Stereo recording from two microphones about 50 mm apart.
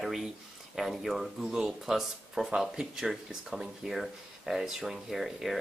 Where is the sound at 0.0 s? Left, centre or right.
Centre.